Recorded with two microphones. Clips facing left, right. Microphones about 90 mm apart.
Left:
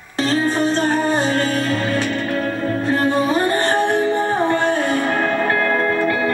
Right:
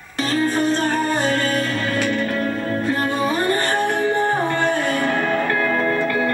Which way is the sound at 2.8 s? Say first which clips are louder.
Left 4 dB; 35° left (ahead or behind).